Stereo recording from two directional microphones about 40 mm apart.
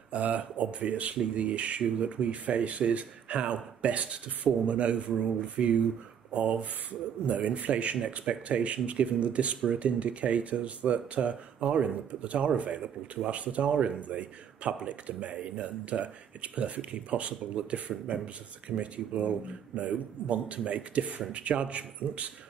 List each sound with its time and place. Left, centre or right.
0.1 s speech: right
17.7 s speech: right